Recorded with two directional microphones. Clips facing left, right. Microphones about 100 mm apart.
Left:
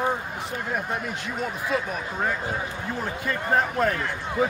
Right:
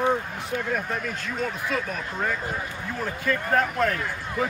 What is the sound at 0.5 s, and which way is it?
Speech, 15° left (ahead or behind).